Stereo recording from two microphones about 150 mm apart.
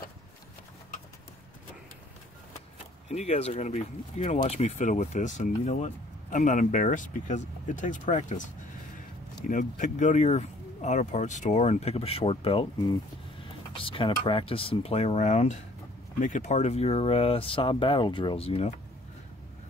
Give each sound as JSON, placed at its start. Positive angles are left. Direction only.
{"t": 3.1, "sound": "speech", "side_deg": 45}
{"t": 9.5, "sound": "speech", "side_deg": 60}
{"t": 13.7, "sound": "speech", "side_deg": 35}